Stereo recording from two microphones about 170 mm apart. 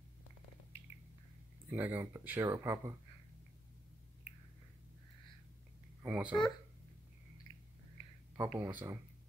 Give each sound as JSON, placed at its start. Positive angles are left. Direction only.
{"t": 1.7, "sound": "speech", "side_deg": -10}
{"t": 6.0, "sound": "speech", "side_deg": -10}
{"t": 7.5, "sound": "a sound", "side_deg": 25}
{"t": 8.4, "sound": "speech", "side_deg": -15}